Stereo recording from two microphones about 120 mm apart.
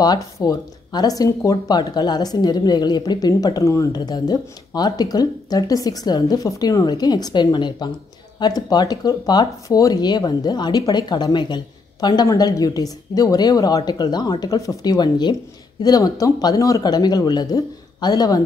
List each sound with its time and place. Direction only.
0.0 s speech: 30° left (ahead or behind)